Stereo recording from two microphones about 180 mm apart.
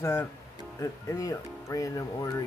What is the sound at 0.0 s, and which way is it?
Speech, 15° left (ahead or behind).